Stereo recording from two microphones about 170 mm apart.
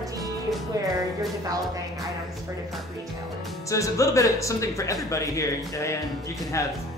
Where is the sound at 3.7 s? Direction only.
20° left (ahead or behind).